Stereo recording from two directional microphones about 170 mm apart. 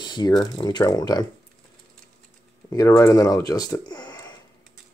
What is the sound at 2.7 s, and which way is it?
Speech, 20° left (ahead or behind).